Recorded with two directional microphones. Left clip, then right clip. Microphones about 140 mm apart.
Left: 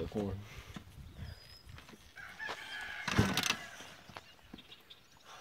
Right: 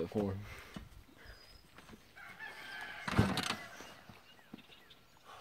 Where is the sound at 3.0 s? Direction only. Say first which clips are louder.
Left 2 dB; 15° left (ahead or behind).